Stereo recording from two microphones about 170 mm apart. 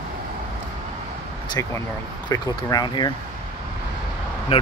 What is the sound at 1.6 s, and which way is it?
Speech, 15° left (ahead or behind).